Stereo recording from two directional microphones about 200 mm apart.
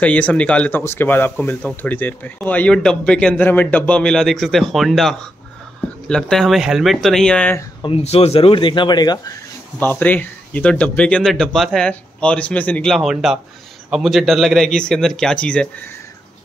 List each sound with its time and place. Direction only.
0.0 s speech: 5° left (ahead or behind)
7.8 s speech: 30° left (ahead or behind)
9.8 s speech: 10° left (ahead or behind)